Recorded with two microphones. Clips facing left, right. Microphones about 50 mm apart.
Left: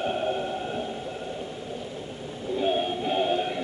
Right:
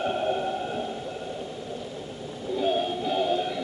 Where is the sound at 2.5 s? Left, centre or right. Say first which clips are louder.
Even; left.